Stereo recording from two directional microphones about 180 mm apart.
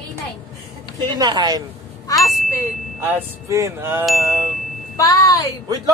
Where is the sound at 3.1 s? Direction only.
15° right (ahead or behind).